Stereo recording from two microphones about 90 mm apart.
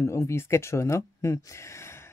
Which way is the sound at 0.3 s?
30° left (ahead or behind).